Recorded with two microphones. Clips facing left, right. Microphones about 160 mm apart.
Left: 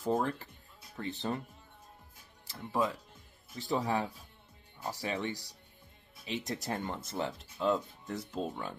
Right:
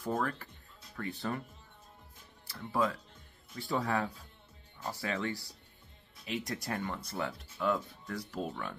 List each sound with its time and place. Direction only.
0.0 s speech: 25° left (ahead or behind)
2.4 s speech: 20° left (ahead or behind)